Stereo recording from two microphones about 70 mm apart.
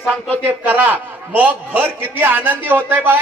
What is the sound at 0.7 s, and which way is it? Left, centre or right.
A man's voice, right.